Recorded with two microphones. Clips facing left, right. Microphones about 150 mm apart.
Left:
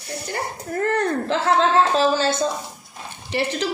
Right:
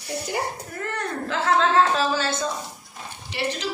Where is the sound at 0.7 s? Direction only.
45° left (ahead or behind).